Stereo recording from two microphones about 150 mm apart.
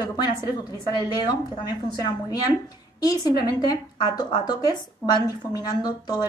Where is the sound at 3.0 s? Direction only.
25° left (ahead or behind).